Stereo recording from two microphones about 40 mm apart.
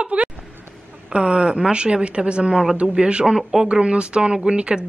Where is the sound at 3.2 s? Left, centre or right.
Centre.